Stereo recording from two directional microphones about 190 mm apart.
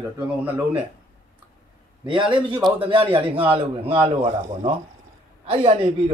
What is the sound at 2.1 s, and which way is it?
Speech, 25° right (ahead or behind).